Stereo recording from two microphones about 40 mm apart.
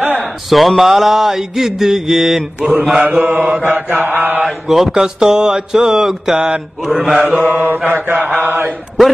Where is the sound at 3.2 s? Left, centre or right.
Right.